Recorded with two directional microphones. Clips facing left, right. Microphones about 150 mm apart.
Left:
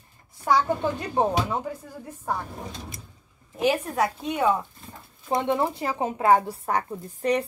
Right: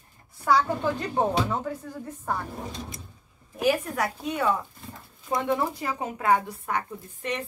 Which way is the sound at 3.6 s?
25° left (ahead or behind).